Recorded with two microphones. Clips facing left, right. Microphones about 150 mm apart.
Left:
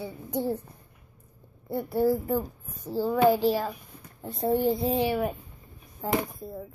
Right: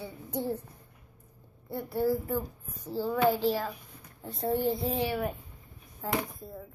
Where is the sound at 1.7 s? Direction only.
15° left (ahead or behind).